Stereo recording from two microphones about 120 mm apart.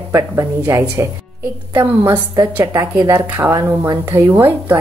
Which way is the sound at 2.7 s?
25° right (ahead or behind).